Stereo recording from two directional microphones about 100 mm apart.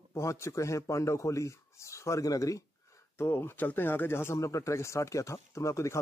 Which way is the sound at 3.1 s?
25° left (ahead or behind).